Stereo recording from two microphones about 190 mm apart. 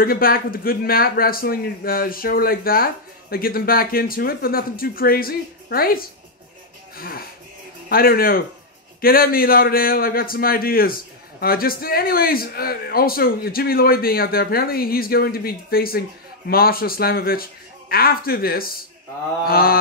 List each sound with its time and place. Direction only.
0.0 s a man's voice: 50° left (ahead or behind)